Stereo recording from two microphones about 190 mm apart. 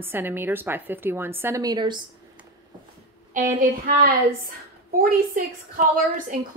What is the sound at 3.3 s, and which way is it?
Speech, 45° right (ahead or behind).